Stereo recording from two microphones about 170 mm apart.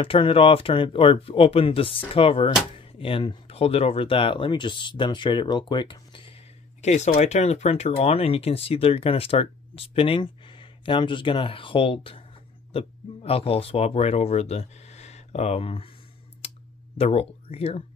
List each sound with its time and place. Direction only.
0.0 s speech: 30° left (ahead or behind)
6.8 s speech: 40° left (ahead or behind)
16.3 s a sound: 35° left (ahead or behind)